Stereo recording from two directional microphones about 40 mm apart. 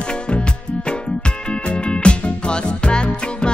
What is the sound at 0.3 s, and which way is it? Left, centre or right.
Music, left.